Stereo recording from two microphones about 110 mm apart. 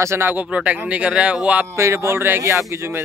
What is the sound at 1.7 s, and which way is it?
Speech, 25° right (ahead or behind).